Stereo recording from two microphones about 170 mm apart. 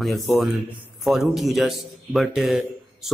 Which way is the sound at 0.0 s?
Centre (ahead or behind).